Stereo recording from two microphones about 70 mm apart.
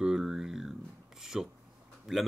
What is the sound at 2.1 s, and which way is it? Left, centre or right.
Speech, centre.